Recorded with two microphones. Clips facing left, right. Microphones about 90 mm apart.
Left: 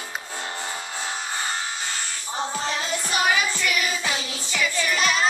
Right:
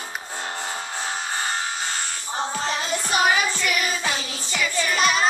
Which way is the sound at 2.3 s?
35° right (ahead or behind).